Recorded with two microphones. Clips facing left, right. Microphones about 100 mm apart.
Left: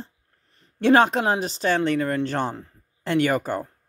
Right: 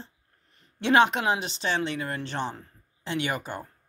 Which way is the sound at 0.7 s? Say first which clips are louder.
Left 4 dB; 40° left (ahead or behind).